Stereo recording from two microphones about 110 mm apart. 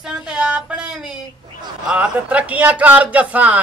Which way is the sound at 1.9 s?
10° right (ahead or behind).